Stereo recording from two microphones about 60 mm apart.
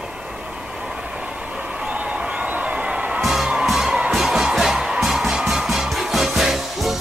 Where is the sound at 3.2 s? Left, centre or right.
Centre.